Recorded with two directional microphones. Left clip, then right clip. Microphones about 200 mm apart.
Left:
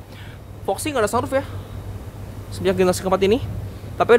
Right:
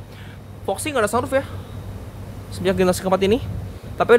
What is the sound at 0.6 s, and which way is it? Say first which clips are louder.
Speech: even; 5° left (ahead or behind).